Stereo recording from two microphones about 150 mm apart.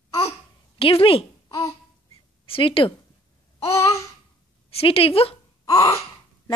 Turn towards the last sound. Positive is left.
turn(degrees=20)  # may be behind; listen again after turning